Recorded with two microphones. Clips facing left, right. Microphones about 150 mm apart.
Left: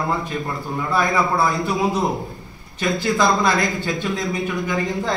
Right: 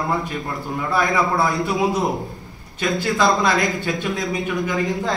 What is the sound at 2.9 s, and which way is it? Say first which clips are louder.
Speech: even; 20° left (ahead or behind).